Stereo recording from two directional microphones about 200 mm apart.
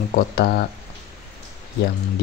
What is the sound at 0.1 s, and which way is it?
Speech, 50° left (ahead or behind).